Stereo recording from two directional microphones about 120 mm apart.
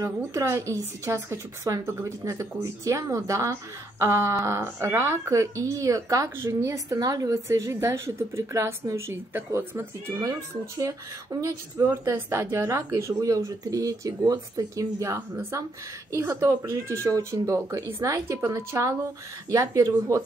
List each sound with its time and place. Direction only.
0.0 s speech: 25° right (ahead or behind)
11.4 s speech: 25° right (ahead or behind)